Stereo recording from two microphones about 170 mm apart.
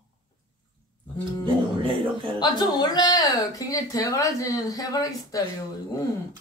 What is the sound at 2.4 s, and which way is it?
Speech, 25° left (ahead or behind).